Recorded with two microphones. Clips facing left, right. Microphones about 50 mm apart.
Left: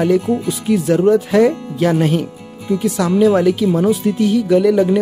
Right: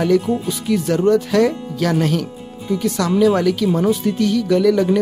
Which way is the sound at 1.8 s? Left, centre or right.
Centre.